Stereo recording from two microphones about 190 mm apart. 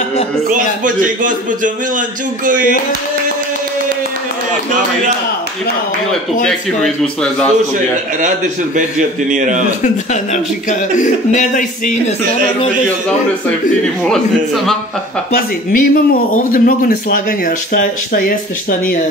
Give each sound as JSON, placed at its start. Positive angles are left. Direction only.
{"t": 0.5, "sound": "a man's voice", "side_deg": -45}
{"t": 6.4, "sound": "a man's voice", "side_deg": 0}
{"t": 9.3, "sound": "a man's voice", "side_deg": -40}
{"t": 10.3, "sound": "a man's voice", "side_deg": 40}
{"t": 14.0, "sound": "a man's voice", "side_deg": 0}
{"t": 15.3, "sound": "speech", "side_deg": 45}